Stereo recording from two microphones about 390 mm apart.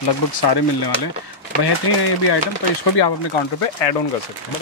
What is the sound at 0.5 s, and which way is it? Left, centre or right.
Speech, left.